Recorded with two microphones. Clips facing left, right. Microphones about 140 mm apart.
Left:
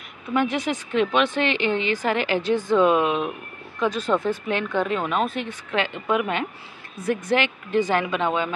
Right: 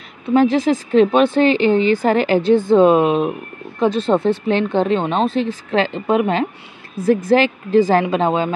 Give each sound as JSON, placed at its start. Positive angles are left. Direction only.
{"t": 0.3, "sound": "speech", "side_deg": -30}